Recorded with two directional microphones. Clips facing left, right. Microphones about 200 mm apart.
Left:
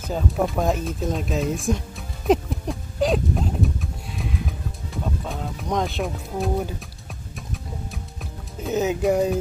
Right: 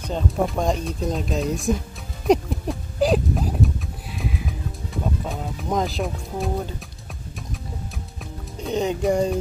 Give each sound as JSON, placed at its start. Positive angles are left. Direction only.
{"t": 0.0, "sound": "speech", "side_deg": 5}
{"t": 2.2, "sound": "a sound", "side_deg": 0}
{"t": 4.9, "sound": "music", "side_deg": 0}
{"t": 8.6, "sound": "speech", "side_deg": 5}